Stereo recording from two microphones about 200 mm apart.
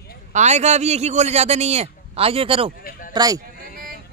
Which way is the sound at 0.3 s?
35° right (ahead or behind).